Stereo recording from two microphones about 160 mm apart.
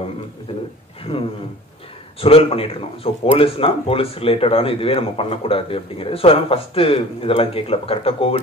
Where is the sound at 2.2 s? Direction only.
35° left (ahead or behind).